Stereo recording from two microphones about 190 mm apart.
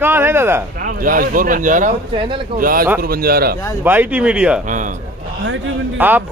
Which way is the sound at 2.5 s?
50° right (ahead or behind).